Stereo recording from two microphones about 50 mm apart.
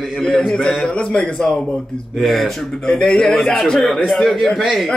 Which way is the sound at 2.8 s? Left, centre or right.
Centre.